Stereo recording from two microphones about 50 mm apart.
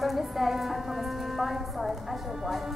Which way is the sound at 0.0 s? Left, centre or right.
Centre.